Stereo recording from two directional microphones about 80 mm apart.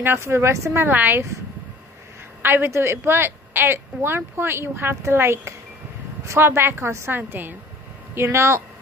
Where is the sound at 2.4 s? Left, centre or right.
Right.